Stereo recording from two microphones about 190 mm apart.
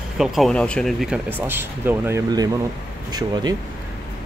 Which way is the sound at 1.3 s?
10° right (ahead or behind).